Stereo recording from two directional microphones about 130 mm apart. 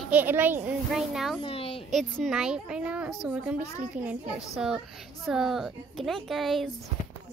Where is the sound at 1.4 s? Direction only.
45° left (ahead or behind).